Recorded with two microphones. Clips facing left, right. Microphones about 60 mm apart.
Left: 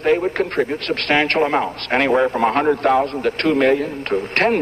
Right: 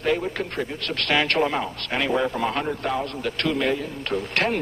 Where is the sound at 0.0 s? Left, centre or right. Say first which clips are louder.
Left 7 dB; left.